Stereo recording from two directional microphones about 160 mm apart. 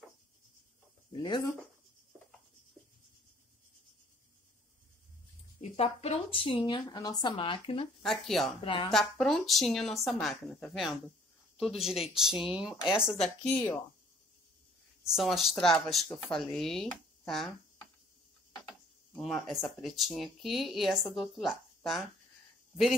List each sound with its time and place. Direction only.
1.1 s speech: 30° left (ahead or behind)
5.6 s a woman's voice: 40° left (ahead or behind)
8.0 s speech: centre (ahead or behind)
8.6 s speech: 30° left (ahead or behind)
8.9 s speech: centre (ahead or behind)
13.4 s speech: 5° left (ahead or behind)
15.0 s speech: centre (ahead or behind)
19.1 s speech: centre (ahead or behind)